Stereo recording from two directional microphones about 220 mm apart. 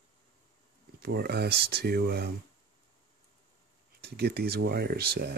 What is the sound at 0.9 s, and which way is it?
Speech, 45° right (ahead or behind).